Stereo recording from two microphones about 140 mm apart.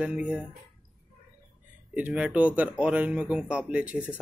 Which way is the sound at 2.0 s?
10° right (ahead or behind).